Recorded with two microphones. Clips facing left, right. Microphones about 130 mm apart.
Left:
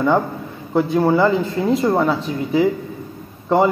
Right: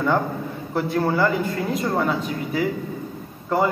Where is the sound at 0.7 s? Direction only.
20° left (ahead or behind).